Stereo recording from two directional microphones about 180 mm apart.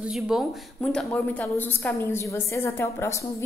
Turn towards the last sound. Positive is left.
turn(degrees=15)  # may be behind; listen again after turning